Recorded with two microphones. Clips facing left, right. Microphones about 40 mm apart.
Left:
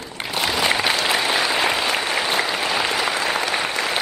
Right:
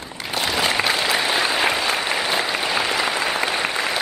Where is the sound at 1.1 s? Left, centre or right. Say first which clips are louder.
Even; centre.